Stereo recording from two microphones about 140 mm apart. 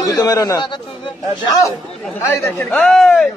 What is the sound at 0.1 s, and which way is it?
Speech, 25° left (ahead or behind).